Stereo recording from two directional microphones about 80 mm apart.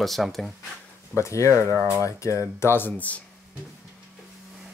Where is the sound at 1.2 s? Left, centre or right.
Left; by 3.2 s centre.